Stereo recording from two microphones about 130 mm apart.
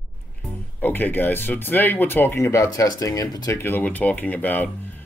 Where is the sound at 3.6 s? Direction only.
15° left (ahead or behind).